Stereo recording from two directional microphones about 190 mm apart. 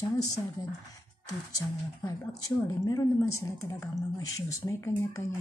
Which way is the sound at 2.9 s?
15° left (ahead or behind).